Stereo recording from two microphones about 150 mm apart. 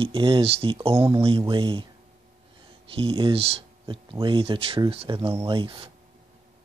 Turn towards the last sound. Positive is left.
turn(degrees=-35)  # may be behind; listen again after turning